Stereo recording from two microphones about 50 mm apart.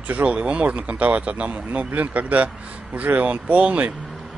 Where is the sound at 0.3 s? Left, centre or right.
Right.